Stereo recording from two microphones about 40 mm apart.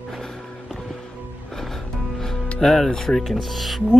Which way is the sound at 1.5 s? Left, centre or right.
Centre.